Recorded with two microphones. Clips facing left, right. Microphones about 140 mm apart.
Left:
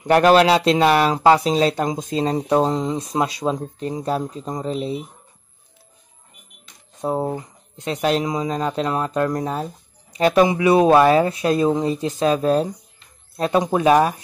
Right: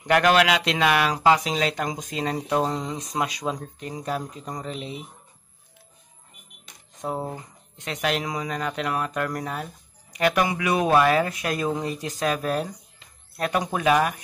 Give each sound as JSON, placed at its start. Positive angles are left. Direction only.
{"t": 0.0, "sound": "speech", "side_deg": 35}
{"t": 7.0, "sound": "speech", "side_deg": 30}